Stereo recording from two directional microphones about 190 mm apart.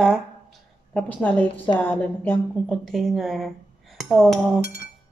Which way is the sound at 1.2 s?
10° left (ahead or behind).